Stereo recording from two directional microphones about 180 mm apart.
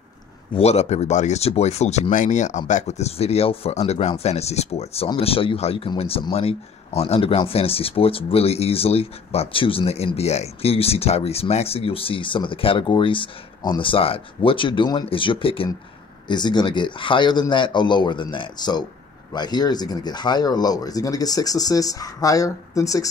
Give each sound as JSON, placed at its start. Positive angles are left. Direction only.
{"t": 0.6, "sound": "speech", "side_deg": 35}